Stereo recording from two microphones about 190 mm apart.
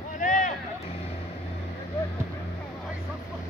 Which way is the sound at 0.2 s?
40° left (ahead or behind).